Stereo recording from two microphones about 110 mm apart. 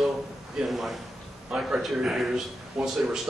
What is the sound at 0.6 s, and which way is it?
Speech, centre (ahead or behind).